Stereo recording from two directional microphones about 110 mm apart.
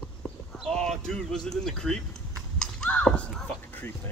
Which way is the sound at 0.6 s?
5° left (ahead or behind).